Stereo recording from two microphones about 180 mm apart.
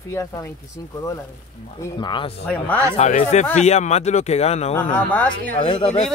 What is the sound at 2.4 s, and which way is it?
Speech, 10° left (ahead or behind).